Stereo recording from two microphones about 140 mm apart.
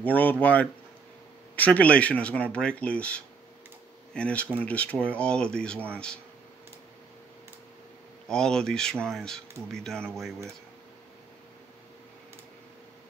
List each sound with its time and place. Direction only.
0.0 s speech: 10° left (ahead or behind)
8.3 s speech: 5° left (ahead or behind)